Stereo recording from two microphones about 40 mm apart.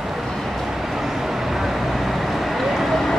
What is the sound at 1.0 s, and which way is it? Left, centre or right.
Vehicle, centre.